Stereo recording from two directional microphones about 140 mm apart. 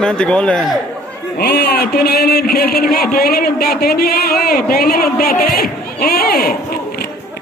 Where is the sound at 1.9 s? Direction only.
90° left.